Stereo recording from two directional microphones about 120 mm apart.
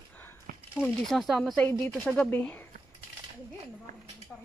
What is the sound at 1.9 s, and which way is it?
Speech, 5° left (ahead or behind).